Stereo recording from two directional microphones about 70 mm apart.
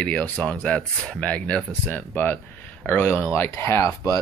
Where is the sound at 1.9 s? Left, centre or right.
Left.